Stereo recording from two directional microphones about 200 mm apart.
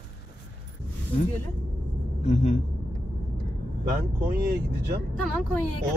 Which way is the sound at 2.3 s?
35° left (ahead or behind).